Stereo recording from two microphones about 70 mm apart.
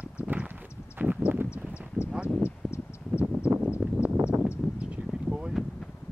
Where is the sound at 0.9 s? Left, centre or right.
Right.